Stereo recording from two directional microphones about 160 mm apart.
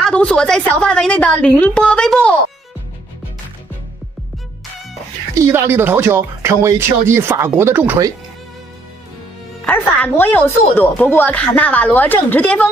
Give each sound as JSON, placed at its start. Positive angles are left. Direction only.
{"t": 0.0, "sound": "speech", "side_deg": 5}
{"t": 5.3, "sound": "speech", "side_deg": -15}
{"t": 9.7, "sound": "speech", "side_deg": 10}